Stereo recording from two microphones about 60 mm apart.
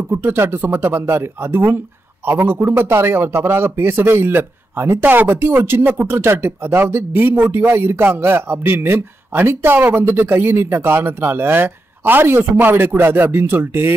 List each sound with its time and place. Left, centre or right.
0.1 s speech: right